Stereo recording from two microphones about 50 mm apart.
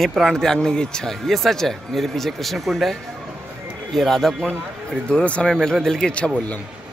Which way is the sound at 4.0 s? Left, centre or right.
Centre.